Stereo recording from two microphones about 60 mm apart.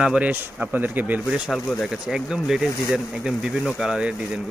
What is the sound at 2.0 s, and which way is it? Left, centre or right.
Speech, centre.